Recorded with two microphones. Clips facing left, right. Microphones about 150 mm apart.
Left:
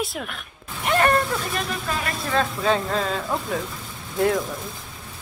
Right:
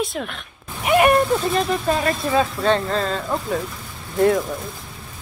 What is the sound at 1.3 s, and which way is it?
Speech, 30° right (ahead or behind).